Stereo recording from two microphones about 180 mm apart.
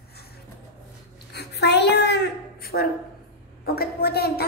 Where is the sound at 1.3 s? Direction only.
65° left (ahead or behind).